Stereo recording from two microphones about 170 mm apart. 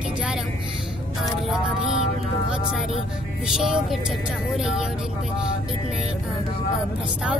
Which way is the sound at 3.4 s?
5° right (ahead or behind).